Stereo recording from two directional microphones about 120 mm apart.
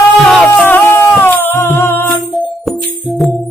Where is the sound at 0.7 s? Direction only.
15° left (ahead or behind).